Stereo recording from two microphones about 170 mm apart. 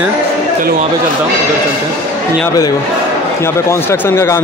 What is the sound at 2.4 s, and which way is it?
Speech, 20° left (ahead or behind).